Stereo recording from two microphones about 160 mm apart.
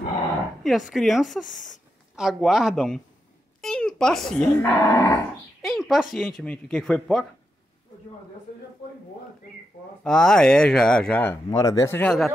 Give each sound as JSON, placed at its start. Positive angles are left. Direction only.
{"t": 0.7, "sound": "speech", "side_deg": 0}
{"t": 4.6, "sound": "speech", "side_deg": 15}
{"t": 5.6, "sound": "speech", "side_deg": 0}
{"t": 10.0, "sound": "speech", "side_deg": 5}
{"t": 11.5, "sound": "speech", "side_deg": 20}